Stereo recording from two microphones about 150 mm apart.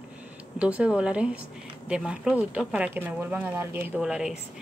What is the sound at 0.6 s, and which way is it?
A woman's voice, 10° right (ahead or behind).